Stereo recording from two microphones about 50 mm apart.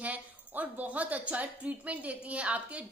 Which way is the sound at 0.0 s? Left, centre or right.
Right.